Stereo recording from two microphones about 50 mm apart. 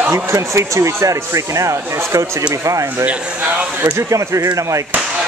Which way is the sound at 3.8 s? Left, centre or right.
Right.